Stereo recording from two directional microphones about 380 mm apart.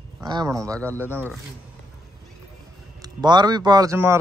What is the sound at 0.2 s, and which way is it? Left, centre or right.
Speech, centre.